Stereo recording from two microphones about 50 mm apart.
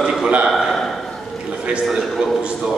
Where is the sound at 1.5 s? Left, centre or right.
Centre.